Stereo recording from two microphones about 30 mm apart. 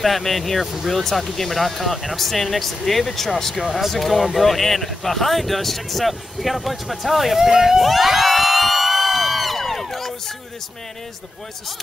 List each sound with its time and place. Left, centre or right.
0.0 s speech: centre
7.3 s speech: centre
8.0 s a sound: centre